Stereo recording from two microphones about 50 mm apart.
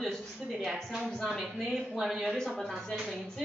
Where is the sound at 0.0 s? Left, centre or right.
Centre.